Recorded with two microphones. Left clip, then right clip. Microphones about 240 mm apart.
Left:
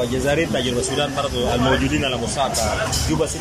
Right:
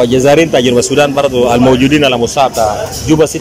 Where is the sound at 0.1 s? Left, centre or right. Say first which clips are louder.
Right 13 dB; right.